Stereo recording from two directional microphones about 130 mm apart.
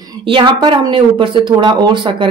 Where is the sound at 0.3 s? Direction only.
40° right (ahead or behind).